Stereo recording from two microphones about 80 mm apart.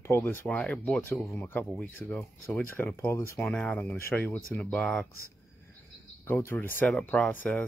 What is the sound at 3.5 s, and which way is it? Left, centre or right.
Speech, centre.